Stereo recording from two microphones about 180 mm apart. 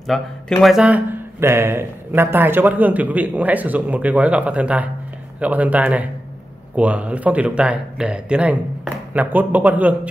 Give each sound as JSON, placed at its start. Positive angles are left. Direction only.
{"t": 0.0, "sound": "speech", "side_deg": 0}